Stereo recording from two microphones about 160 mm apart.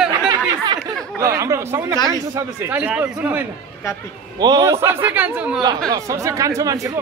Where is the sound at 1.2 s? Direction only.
20° right (ahead or behind).